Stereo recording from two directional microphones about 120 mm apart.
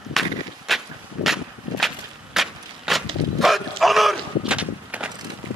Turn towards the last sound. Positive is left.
turn(degrees=-10)  # may be behind; listen again after turning